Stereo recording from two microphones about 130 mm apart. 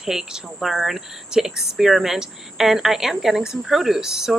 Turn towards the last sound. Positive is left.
turn(degrees=-5)  # may be behind; listen again after turning